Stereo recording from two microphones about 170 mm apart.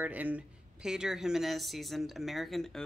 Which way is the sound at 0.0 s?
10° right (ahead or behind).